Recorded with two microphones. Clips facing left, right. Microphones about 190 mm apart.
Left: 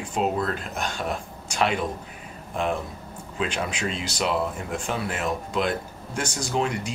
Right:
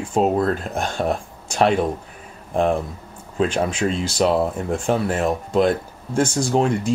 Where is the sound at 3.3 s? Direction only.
45° right (ahead or behind).